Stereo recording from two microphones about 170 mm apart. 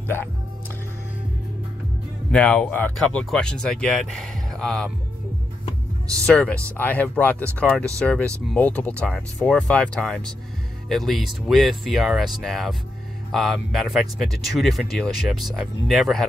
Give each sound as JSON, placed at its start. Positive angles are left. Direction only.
{"t": 2.3, "sound": "speech", "side_deg": 10}
{"t": 6.2, "sound": "speech", "side_deg": 5}